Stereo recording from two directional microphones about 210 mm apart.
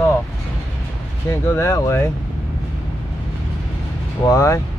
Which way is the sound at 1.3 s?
15° left (ahead or behind).